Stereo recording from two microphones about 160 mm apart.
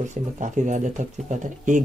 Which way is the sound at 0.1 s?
50° right (ahead or behind).